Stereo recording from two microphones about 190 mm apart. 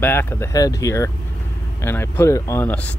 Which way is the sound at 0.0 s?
10° left (ahead or behind).